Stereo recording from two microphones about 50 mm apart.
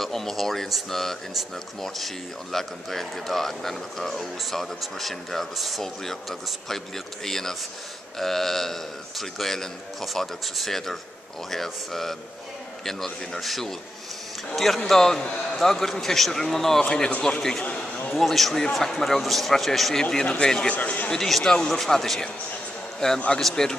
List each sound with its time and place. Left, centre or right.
0.0 s speech: centre
7.2 s a man's voice: centre
20.6 s speech: left
21.1 s a man's voice: centre